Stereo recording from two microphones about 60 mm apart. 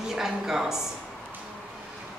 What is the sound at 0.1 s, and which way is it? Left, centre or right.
Speech, centre.